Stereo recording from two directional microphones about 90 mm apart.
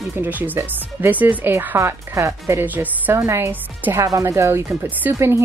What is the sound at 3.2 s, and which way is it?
Speech, 30° right (ahead or behind).